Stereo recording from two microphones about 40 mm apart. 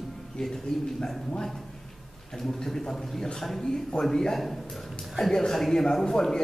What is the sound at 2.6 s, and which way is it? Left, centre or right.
A man's voice, centre.